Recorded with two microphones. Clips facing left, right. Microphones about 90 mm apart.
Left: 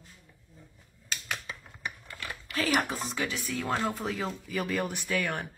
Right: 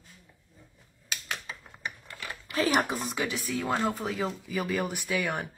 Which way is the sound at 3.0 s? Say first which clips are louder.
Right 1 dB; 5° right (ahead or behind).